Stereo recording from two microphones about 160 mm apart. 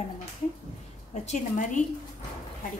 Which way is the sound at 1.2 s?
50° left (ahead or behind).